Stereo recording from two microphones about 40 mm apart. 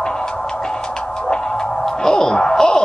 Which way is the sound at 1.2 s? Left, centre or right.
Centre.